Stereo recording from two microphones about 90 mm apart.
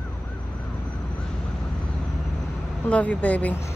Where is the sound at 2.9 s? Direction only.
15° left (ahead or behind).